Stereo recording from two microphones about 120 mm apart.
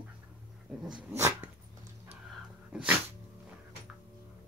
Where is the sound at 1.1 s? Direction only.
20° right (ahead or behind).